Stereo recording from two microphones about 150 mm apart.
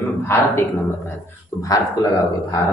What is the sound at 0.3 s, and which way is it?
Speech, 15° left (ahead or behind).